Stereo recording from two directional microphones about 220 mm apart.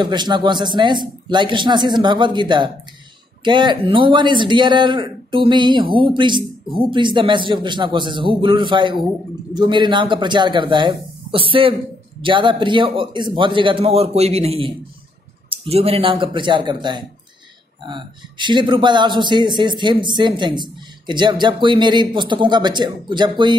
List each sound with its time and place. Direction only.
0.0 s a man's voice: 20° right (ahead or behind)